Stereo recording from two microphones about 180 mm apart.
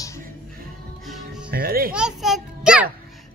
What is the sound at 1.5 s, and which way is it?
Music, 55° right (ahead or behind).